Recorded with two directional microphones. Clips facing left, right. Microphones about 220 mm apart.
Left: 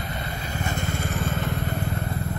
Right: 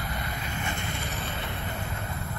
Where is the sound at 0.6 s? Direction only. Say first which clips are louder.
Left 6 dB; 45° left (ahead or behind).